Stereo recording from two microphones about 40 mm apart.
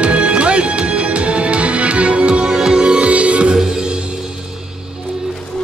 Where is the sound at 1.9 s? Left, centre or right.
Right.